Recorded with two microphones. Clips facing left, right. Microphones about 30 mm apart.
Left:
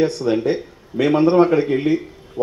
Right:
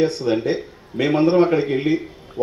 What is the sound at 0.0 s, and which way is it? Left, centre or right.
Speech, centre.